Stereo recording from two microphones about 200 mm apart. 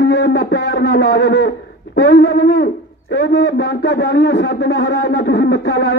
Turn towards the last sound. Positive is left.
turn(degrees=60)  # may be behind; listen again after turning